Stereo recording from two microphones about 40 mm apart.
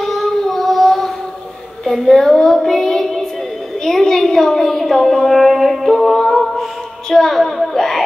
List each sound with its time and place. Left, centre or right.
0.0 s child singing: centre
3.8 s a sound: centre
7.1 s a woman's voice: centre